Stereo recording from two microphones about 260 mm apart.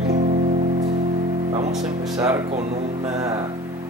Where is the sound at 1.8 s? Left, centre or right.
Right.